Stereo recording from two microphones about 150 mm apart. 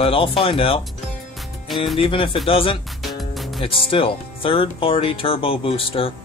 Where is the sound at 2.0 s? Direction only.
35° left (ahead or behind).